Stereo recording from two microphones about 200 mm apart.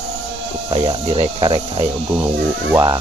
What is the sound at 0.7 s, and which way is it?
Speech, 30° right (ahead or behind).